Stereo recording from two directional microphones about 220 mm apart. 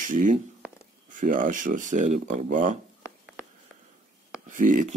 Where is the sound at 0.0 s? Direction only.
35° right (ahead or behind).